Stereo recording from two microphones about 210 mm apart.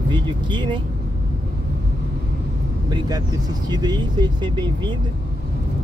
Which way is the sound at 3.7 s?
20° right (ahead or behind).